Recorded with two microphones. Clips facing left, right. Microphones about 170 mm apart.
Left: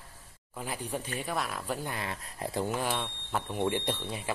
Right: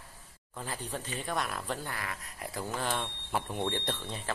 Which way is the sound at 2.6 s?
10° left (ahead or behind).